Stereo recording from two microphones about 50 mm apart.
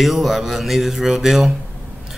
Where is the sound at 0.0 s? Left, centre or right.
Centre.